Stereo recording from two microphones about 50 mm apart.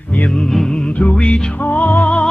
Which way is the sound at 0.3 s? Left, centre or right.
Centre.